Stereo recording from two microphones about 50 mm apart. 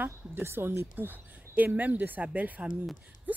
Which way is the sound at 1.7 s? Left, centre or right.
Right.